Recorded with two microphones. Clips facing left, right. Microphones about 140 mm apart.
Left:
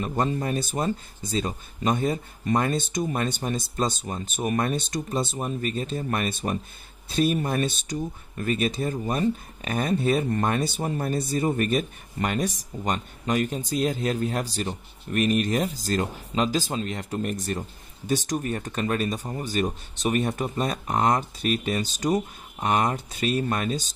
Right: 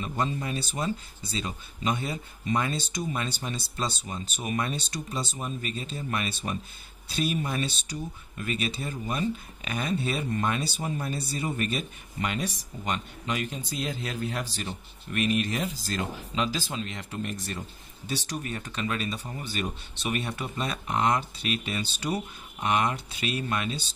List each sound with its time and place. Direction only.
0.0 s speech: 45° left (ahead or behind)